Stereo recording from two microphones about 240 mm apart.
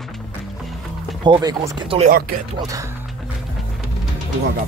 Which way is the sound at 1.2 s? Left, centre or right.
Centre.